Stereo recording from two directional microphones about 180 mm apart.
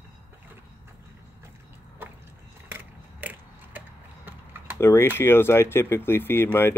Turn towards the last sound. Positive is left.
turn(degrees=15)  # may be behind; listen again after turning